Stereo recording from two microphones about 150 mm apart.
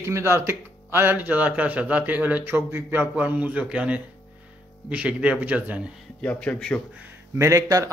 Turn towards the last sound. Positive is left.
turn(degrees=-25)  # may be behind; listen again after turning